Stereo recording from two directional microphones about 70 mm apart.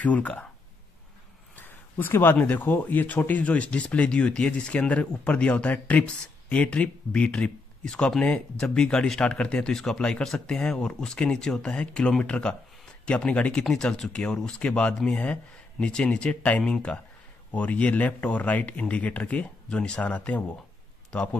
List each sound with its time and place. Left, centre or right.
0.0 s speech: left
1.6 s speech: left